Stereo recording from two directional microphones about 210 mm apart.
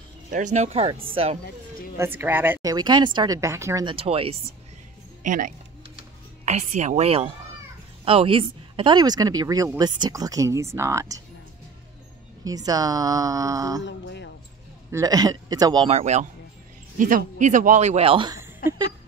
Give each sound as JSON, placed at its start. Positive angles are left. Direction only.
{"t": 0.3, "sound": "a man's voice", "side_deg": -35}
{"t": 2.0, "sound": "a woman's voice", "side_deg": -10}
{"t": 5.2, "sound": "a woman's voice", "side_deg": -40}
{"t": 12.4, "sound": "a woman's voice", "side_deg": -15}
{"t": 13.8, "sound": "speech", "side_deg": 60}
{"t": 14.9, "sound": "a man's voice", "side_deg": -15}